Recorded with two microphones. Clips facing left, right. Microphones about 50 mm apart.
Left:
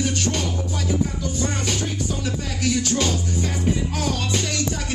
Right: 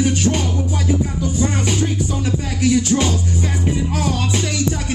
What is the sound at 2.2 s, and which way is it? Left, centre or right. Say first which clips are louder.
Music: right 7 dB; centre.